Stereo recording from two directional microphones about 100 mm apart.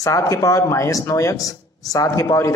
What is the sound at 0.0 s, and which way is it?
A man's voice, 35° left (ahead or behind).